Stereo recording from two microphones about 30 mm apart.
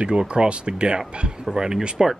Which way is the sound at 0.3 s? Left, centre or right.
Right.